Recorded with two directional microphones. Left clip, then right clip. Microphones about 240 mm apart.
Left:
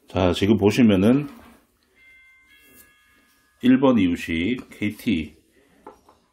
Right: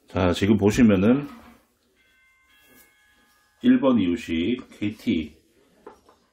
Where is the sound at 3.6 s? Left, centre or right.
Left.